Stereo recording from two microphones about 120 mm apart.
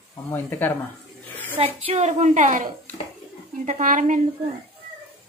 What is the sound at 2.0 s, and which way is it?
Speech, 70° right (ahead or behind).